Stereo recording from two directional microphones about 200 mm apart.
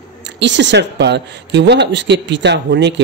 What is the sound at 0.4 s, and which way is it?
Speech, 60° right (ahead or behind).